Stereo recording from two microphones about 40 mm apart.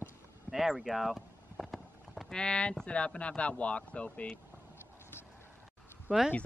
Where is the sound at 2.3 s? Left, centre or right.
Left.